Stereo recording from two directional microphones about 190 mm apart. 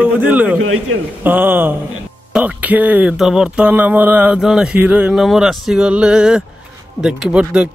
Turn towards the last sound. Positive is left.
turn(degrees=-5)  # may be behind; listen again after turning